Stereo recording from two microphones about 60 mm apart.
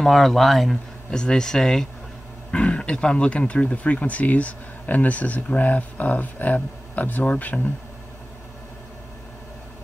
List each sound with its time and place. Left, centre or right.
0.0 s speech: centre
1.1 s speech: centre
2.5 s speech: centre